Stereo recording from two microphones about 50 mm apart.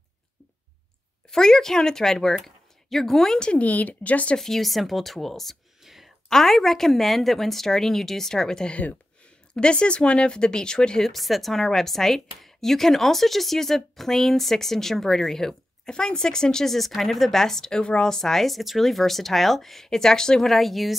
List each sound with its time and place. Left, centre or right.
1.3 s speech: centre
2.4 s a sound: centre
3.3 s speech: left
4.4 s a woman's voice: centre
11.1 s a woman's voice: centre